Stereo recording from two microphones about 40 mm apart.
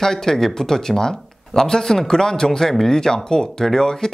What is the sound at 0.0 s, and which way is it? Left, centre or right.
Speech, centre.